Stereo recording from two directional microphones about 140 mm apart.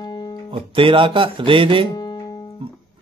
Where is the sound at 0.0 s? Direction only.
30° left (ahead or behind).